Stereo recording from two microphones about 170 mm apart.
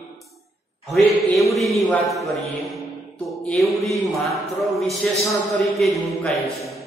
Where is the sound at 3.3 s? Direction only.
Centre (ahead or behind).